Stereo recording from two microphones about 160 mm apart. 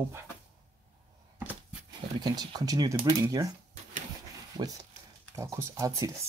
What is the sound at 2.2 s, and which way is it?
Speech, 25° right (ahead or behind).